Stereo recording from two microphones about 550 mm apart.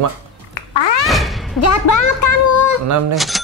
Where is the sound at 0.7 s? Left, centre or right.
Left.